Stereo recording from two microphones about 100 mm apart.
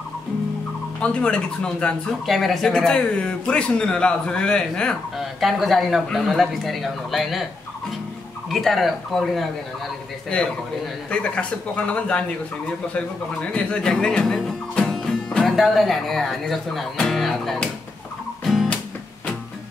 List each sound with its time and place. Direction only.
1.0 s speech: 10° left (ahead or behind)
8.5 s speech: centre (ahead or behind)
18.4 s music: centre (ahead or behind)